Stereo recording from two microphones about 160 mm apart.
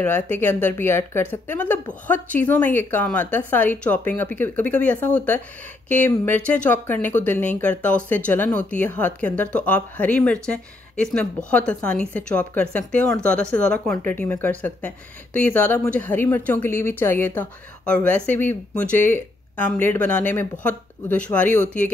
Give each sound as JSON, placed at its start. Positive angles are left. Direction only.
{"t": 0.0, "sound": "speech", "side_deg": 10}
{"t": 21.5, "sound": "speech", "side_deg": 50}